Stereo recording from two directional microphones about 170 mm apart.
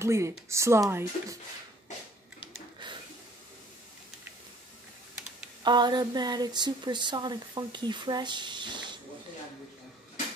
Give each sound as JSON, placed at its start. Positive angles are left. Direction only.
{"t": 0.0, "sound": "speech", "side_deg": -15}
{"t": 5.6, "sound": "speech", "side_deg": -25}